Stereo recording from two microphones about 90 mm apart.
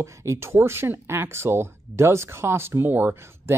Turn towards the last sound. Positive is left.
turn(degrees=-25)  # may be behind; listen again after turning